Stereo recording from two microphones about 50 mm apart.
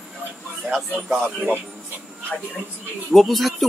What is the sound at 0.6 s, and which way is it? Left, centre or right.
Speech, centre.